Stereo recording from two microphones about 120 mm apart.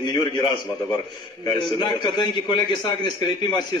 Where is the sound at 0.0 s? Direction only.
40° left (ahead or behind).